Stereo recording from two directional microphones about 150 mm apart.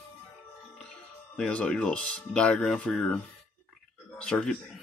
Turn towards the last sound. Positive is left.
turn(degrees=5)  # may be behind; listen again after turning